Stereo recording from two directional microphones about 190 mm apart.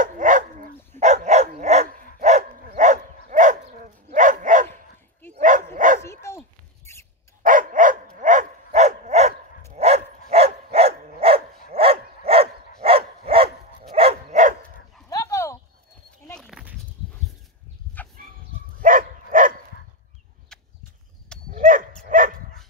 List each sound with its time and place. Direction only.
0.0 s dog: 45° right (ahead or behind)
6.0 s dog: 15° left (ahead or behind)
7.4 s dog: 45° right (ahead or behind)
15.0 s dog: 15° left (ahead or behind)
16.3 s a sound: centre (ahead or behind)
18.2 s chicken: 45° right (ahead or behind)
18.8 s dog: 45° right (ahead or behind)
20.5 s a sound: 5° left (ahead or behind)
21.5 s dog: 45° right (ahead or behind)